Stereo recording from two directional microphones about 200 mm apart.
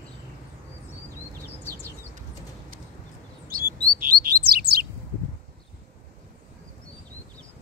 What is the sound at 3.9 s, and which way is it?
Bird, 45° right (ahead or behind).